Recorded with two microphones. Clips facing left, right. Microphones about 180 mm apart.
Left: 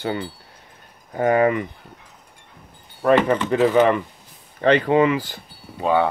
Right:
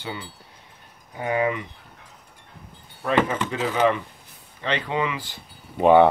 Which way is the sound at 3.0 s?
70° left (ahead or behind).